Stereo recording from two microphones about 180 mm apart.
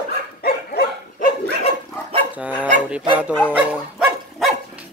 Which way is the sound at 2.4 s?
10° right (ahead or behind).